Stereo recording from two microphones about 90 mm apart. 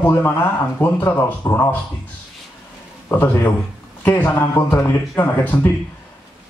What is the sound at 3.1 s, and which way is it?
A man's voice, 20° left (ahead or behind).